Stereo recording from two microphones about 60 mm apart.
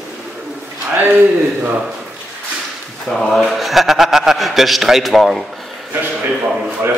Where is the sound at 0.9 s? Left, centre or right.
Right.